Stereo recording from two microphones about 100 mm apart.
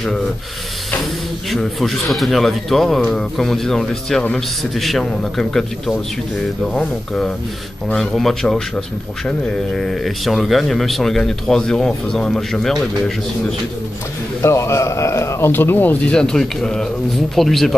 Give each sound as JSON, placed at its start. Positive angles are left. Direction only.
{"t": 1.5, "sound": "speech", "side_deg": 0}
{"t": 14.4, "sound": "a man's voice", "side_deg": 30}